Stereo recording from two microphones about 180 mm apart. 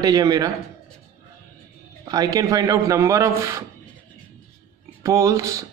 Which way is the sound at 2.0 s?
20° right (ahead or behind).